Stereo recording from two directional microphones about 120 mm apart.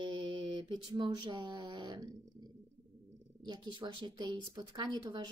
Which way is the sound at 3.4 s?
35° right (ahead or behind).